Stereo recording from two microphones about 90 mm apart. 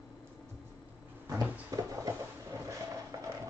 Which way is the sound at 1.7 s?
45° right (ahead or behind).